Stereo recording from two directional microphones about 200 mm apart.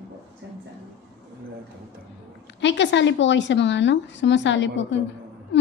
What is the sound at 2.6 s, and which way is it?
A woman's voice, 65° left (ahead or behind).